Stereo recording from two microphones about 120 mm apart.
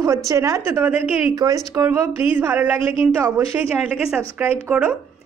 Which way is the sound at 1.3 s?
30° right (ahead or behind).